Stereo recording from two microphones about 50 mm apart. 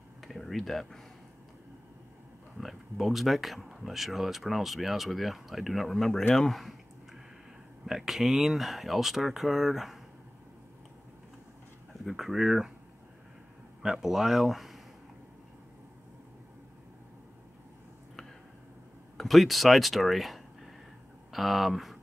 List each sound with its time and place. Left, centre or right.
0.2 s speech: centre
2.5 s speech: centre
7.8 s speech: centre
11.9 s speech: centre
13.8 s speech: centre
19.1 s speech: centre